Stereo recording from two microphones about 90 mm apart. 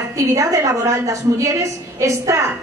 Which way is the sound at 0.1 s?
40° right (ahead or behind).